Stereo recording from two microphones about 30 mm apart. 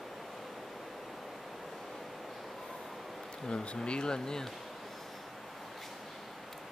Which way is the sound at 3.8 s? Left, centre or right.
Left.